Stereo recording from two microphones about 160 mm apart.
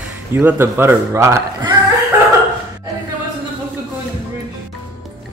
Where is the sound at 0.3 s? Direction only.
15° right (ahead or behind).